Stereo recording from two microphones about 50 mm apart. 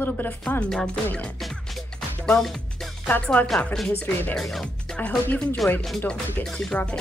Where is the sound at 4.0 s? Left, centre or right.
Left.